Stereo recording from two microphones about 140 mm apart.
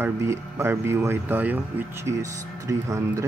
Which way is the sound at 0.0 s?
20° right (ahead or behind).